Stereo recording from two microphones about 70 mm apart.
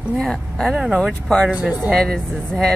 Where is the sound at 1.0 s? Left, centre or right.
Centre.